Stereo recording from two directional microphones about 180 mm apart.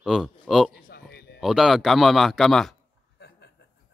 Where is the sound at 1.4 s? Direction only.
Centre (ahead or behind).